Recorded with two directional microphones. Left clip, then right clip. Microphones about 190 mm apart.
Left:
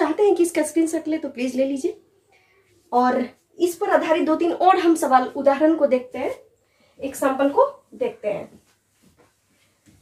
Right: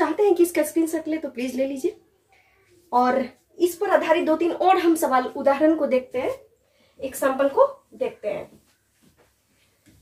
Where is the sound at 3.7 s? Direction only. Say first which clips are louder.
Left 1 dB; 10° left (ahead or behind).